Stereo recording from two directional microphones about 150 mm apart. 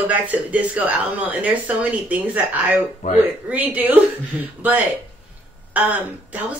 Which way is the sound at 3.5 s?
10° right (ahead or behind).